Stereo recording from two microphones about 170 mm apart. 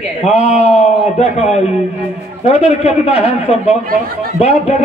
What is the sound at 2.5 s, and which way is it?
A man's voice, 40° left (ahead or behind).